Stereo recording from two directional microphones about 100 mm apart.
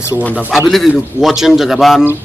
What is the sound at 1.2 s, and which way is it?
Speech, 5° right (ahead or behind).